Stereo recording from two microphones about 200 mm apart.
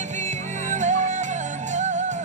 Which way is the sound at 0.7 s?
35° right (ahead or behind).